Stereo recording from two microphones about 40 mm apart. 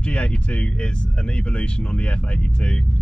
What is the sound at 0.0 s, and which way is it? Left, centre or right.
Speech, left.